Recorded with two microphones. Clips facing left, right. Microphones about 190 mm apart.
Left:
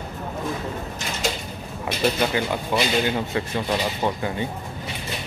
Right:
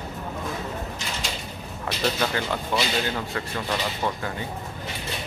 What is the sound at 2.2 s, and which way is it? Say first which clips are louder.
Speech: left 3 dB; 15° left (ahead or behind).